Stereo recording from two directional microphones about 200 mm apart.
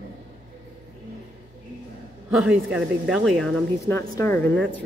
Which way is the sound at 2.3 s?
5° right (ahead or behind).